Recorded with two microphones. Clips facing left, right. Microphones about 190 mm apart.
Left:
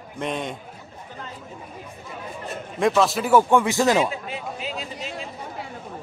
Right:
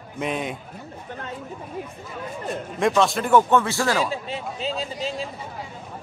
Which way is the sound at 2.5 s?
Centre (ahead or behind).